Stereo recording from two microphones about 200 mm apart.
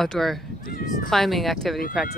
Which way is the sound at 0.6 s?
45° left (ahead or behind).